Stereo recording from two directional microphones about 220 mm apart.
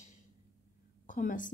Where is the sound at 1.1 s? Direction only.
35° left (ahead or behind).